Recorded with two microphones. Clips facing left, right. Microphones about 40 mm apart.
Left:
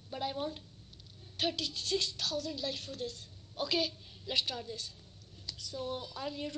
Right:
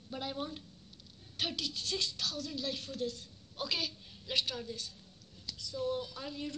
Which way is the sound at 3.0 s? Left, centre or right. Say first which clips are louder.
Right 3 dB; left.